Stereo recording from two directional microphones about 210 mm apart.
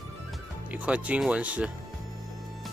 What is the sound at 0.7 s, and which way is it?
Speech, 5° right (ahead or behind).